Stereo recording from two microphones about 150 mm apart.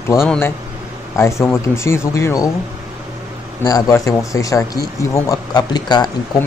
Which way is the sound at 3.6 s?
20° left (ahead or behind).